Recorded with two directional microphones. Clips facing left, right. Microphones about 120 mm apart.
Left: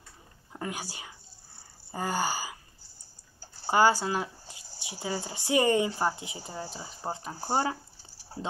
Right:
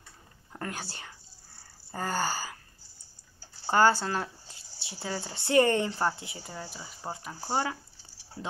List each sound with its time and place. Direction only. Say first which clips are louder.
0.5 s speech: left 1 dB; 10° left (ahead or behind)
3.6 s speech: even; 10° left (ahead or behind); by 7.3 s 30° left (ahead or behind)
7.3 s speech: left 2 dB; 45° left (ahead or behind)
8.4 s speech: left 2 dB; 25° left (ahead or behind)